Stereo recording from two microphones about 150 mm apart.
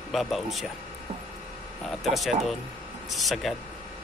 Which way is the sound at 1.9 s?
Centre (ahead or behind).